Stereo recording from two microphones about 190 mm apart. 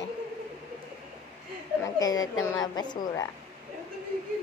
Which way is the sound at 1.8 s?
20° left (ahead or behind).